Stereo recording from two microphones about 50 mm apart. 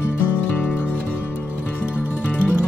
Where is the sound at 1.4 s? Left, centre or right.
Right.